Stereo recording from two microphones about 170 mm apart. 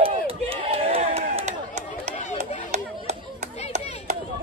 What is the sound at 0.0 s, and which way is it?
Crowd, 35° right (ahead or behind).